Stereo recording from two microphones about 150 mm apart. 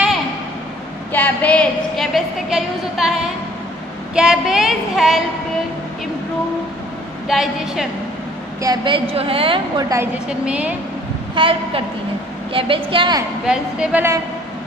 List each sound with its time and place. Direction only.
1.1 s a woman's voice: 10° left (ahead or behind)
7.2 s a woman's voice: centre (ahead or behind)
8.6 s a woman's voice: 35° right (ahead or behind)
10.2 s a woman's voice: 5° right (ahead or behind)
11.3 s a woman's voice: 35° right (ahead or behind)
13.5 s a woman's voice: 10° right (ahead or behind)